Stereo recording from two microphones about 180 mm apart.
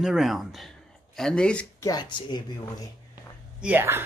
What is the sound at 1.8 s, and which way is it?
Speech, 20° left (ahead or behind).